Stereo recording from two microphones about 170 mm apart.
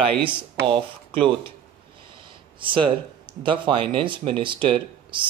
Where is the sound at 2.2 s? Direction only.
30° right (ahead or behind).